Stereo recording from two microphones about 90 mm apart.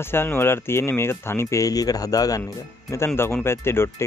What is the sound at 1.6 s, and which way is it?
Speech, 45° left (ahead or behind).